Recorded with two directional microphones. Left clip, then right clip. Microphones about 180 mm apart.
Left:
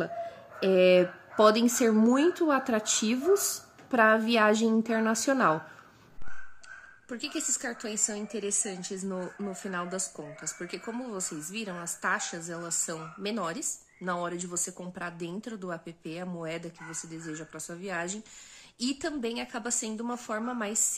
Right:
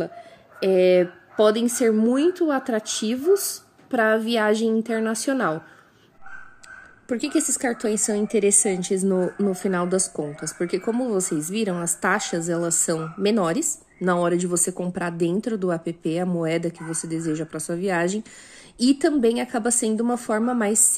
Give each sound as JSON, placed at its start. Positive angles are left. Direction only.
{"t": 0.6, "sound": "a woman's voice", "side_deg": -20}
{"t": 7.1, "sound": "a woman's voice", "side_deg": -20}